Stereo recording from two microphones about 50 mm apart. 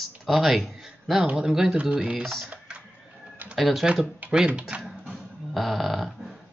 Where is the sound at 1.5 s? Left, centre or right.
Centre.